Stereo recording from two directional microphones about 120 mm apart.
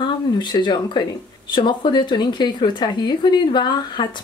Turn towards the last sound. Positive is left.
turn(degrees=40)  # may be behind; listen again after turning